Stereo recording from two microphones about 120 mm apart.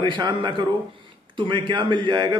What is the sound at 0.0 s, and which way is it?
A man's voice, 40° right (ahead or behind).